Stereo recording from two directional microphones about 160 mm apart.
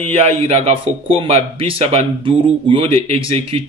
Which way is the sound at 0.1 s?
40° right (ahead or behind).